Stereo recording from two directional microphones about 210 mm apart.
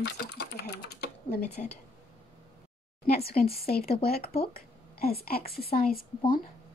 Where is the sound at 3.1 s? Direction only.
45° left (ahead or behind).